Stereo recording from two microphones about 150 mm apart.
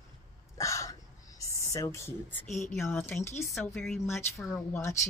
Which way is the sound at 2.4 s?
50° left (ahead or behind).